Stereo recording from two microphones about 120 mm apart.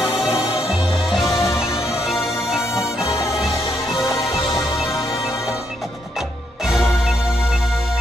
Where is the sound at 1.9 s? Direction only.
Centre (ahead or behind).